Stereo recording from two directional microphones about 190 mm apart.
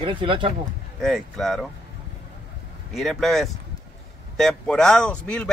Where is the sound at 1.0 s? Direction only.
Centre (ahead or behind).